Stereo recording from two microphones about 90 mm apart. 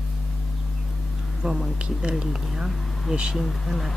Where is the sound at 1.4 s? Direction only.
5° right (ahead or behind).